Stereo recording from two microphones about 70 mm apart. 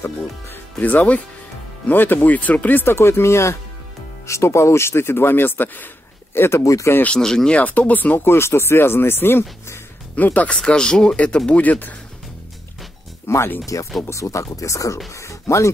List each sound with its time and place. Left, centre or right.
0.7 s speech: left
6.6 s speech: left
7.1 s speech: centre
7.5 s speech: left
10.6 s speech: centre
11.6 s speech: left
13.3 s speech: left
13.7 s speech: left